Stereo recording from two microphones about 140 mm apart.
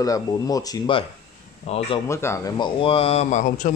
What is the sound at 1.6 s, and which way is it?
Speech, 45° left (ahead or behind).